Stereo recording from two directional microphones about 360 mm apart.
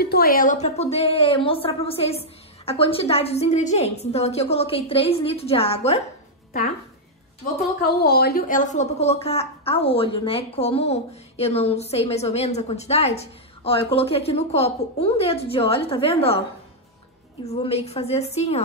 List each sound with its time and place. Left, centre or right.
0.0 s a woman's voice: left
8.0 s a woman's voice: left
17.5 s a woman's voice: centre